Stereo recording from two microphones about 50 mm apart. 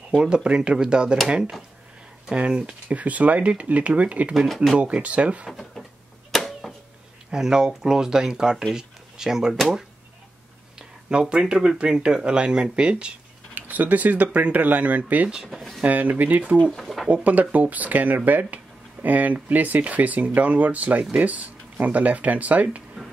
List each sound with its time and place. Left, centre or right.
0.2 s speech: centre
5.5 s a sound: centre
7.2 s speech: centre
10.8 s speech: centre
13.6 s speech: right
15.2 s speech: centre
15.5 s speech: centre
15.8 s speech: right
16.7 s speech: centre
17.1 s speech: right